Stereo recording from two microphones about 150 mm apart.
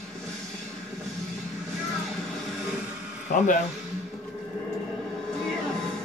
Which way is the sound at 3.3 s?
60° left (ahead or behind).